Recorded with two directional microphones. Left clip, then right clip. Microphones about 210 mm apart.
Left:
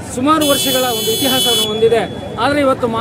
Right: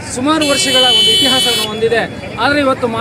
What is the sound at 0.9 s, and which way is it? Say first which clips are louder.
Speech: right 6 dB; 25° left (ahead or behind).